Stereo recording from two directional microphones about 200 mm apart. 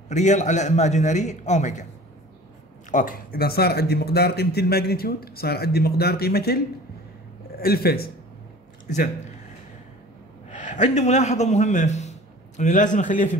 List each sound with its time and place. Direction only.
0.1 s a man's voice: 35° left (ahead or behind)
2.9 s a man's voice: 40° left (ahead or behind)
8.8 s speech: 40° left (ahead or behind)
10.5 s a man's voice: 35° left (ahead or behind)